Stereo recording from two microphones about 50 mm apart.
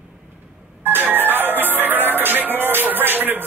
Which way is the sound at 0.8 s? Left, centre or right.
Right.